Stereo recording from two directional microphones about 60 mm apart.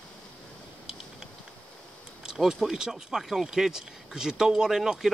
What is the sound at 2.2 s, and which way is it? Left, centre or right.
Speech, centre.